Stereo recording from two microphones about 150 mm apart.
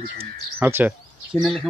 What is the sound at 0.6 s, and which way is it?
Speech, 15° right (ahead or behind).